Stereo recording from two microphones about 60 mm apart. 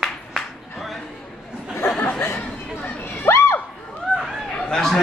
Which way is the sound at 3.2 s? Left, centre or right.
Left.